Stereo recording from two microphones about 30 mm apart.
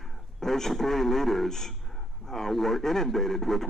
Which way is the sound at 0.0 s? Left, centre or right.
Centre.